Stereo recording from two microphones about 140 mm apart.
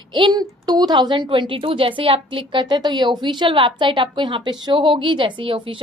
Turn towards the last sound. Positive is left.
turn(degrees=-35)  # may be behind; listen again after turning